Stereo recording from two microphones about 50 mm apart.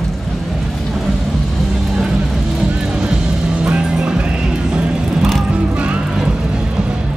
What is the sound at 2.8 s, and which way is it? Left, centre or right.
Music, centre.